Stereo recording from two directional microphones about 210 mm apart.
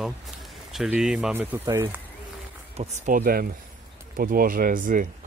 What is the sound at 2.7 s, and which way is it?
Speech, 30° right (ahead or behind).